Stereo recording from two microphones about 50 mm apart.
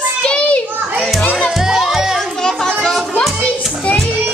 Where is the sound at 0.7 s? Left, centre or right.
Right.